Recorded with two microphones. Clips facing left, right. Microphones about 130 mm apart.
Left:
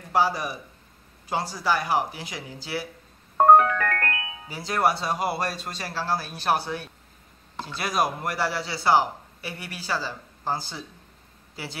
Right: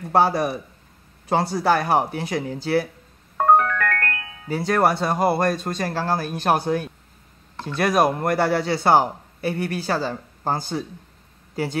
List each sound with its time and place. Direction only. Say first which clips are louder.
0.1 s a man's voice: right 5 dB; 55° right (ahead or behind)
3.5 s music: left 1 dB; 10° left (ahead or behind)
4.5 s a man's voice: right 5 dB; 55° right (ahead or behind)